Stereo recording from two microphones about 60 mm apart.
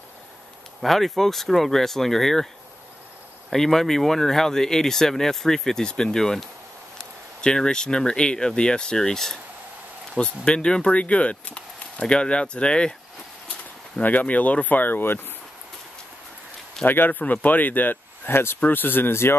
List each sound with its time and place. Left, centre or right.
0.7 s speech: centre
3.4 s speech: centre
14.0 s speech: left
16.8 s speech: left